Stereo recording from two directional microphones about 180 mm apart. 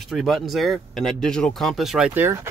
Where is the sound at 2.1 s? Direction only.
10° right (ahead or behind).